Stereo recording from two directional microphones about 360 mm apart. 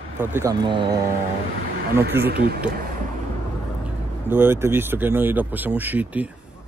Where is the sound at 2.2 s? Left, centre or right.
Right.